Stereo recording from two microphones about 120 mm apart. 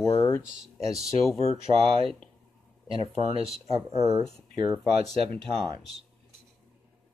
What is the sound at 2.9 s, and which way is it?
Speech, 55° right (ahead or behind).